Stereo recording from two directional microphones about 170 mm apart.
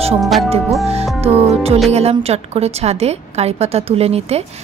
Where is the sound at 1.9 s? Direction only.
40° right (ahead or behind).